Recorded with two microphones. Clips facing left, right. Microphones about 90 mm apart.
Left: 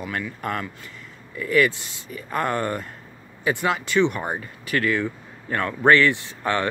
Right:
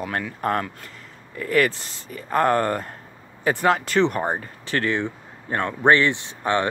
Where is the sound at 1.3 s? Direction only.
45° right (ahead or behind).